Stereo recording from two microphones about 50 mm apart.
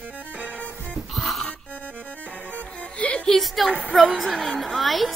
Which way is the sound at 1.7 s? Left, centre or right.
Right.